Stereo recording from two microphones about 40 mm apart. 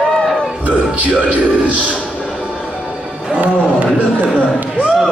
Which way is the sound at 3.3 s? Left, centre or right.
Right.